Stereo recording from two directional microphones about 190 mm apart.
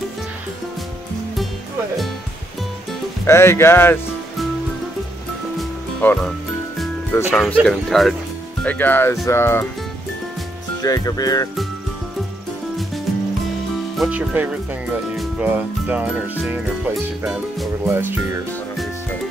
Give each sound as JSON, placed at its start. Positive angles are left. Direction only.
{"t": 3.3, "sound": "speech", "side_deg": 15}
{"t": 5.6, "sound": "music", "side_deg": 5}
{"t": 7.6, "sound": "speech", "side_deg": 0}
{"t": 10.8, "sound": "speech", "side_deg": 20}
{"t": 13.9, "sound": "speech", "side_deg": -5}